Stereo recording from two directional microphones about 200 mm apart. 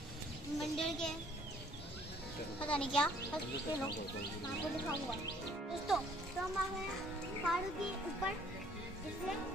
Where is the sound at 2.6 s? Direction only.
5° left (ahead or behind).